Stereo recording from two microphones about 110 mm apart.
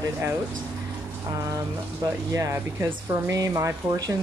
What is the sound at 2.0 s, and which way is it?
Speech, 25° right (ahead or behind).